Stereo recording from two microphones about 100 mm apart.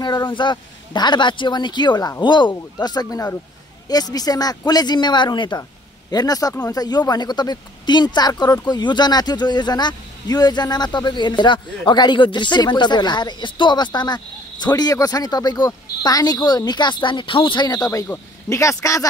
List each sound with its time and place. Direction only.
0.0 s a woman's voice: 50° left (ahead or behind)
5.6 s a sound: 40° left (ahead or behind)
6.6 s a woman's voice: 40° left (ahead or behind); by 17.6 s 60° left (ahead or behind)
18.0 s speech: 25° left (ahead or behind)